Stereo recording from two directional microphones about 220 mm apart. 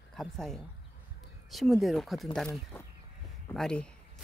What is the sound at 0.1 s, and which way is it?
Speech, centre (ahead or behind).